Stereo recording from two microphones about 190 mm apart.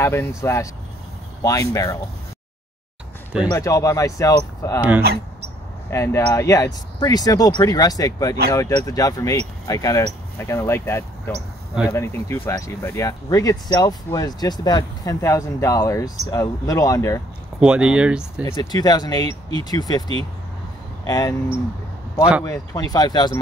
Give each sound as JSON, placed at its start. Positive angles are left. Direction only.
{"t": 0.0, "sound": "speech", "side_deg": 15}
{"t": 3.4, "sound": "speech", "side_deg": 15}
{"t": 5.9, "sound": "speech", "side_deg": 15}
{"t": 17.6, "sound": "speech", "side_deg": -5}
{"t": 18.4, "sound": "speech", "side_deg": 20}
{"t": 22.4, "sound": "speech", "side_deg": 20}